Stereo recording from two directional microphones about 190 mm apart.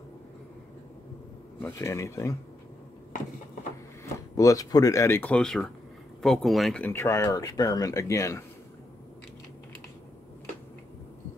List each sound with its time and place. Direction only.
1.6 s speech: 15° left (ahead or behind)
4.0 s speech: 15° left (ahead or behind)